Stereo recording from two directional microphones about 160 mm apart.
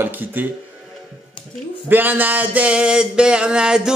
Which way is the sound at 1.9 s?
10° right (ahead or behind).